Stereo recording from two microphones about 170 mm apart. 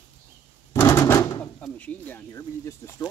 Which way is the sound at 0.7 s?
15° left (ahead or behind).